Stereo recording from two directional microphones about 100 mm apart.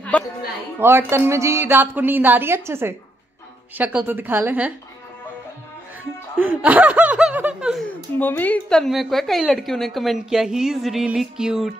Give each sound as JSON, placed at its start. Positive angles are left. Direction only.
{"t": 0.1, "sound": "a woman's voice", "side_deg": 15}
{"t": 0.7, "sound": "speech", "side_deg": -25}
{"t": 6.3, "sound": "speech", "side_deg": -15}
{"t": 8.2, "sound": "a woman's voice", "side_deg": 20}
{"t": 8.7, "sound": "a woman's voice", "side_deg": 0}